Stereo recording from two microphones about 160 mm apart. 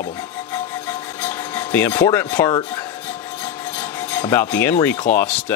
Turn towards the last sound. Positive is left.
turn(degrees=10)  # may be behind; listen again after turning